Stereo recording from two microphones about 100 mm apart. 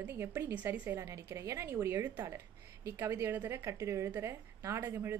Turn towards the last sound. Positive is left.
turn(degrees=-25)  # may be behind; listen again after turning